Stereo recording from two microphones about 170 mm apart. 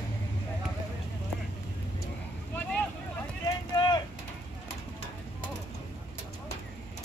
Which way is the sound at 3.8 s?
25° left (ahead or behind).